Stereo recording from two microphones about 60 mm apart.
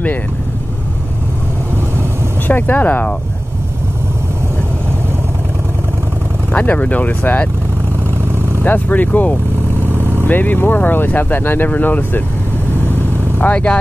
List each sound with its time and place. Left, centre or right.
2.4 s speech: left
6.5 s speech: left
8.6 s speech: left
9.8 s vehicle: right
10.2 s speech: left
13.4 s speech: left